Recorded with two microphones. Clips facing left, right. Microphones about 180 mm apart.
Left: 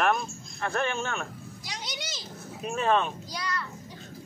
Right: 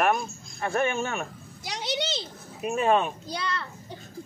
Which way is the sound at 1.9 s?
70° right (ahead or behind).